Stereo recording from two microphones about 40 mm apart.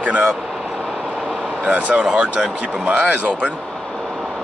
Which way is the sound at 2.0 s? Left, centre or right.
Right.